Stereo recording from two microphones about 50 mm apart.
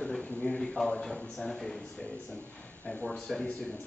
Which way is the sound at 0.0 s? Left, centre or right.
Left.